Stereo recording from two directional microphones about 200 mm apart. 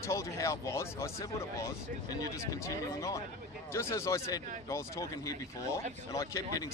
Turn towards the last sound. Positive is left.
turn(degrees=15)  # may be behind; listen again after turning